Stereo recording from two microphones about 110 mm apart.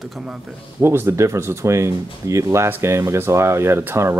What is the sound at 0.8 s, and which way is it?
Speech, 20° right (ahead or behind).